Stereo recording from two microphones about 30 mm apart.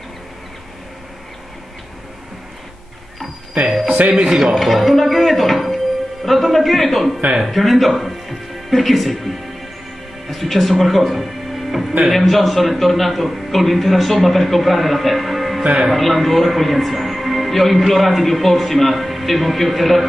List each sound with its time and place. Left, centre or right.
4.3 s speech: centre
4.6 s speech: centre